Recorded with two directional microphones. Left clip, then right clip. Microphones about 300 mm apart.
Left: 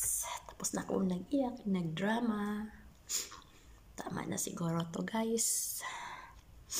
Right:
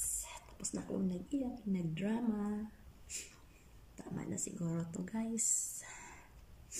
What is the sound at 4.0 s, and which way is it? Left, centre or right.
Speech, centre.